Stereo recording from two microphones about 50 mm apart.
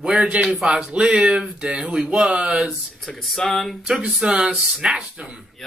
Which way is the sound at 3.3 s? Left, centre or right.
Centre.